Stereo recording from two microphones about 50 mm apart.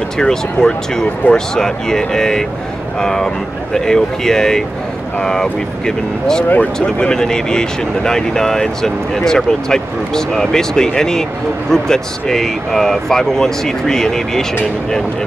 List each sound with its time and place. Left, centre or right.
0.2 s speech: centre
6.5 s speech: left
7.1 s speech: centre